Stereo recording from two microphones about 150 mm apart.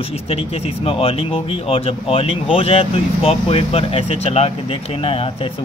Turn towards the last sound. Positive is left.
turn(degrees=40)  # may be behind; listen again after turning